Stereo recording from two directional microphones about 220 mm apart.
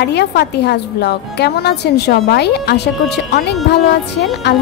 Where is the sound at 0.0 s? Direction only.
50° left (ahead or behind).